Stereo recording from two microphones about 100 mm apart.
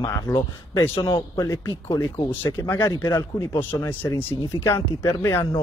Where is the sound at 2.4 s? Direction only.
20° left (ahead or behind).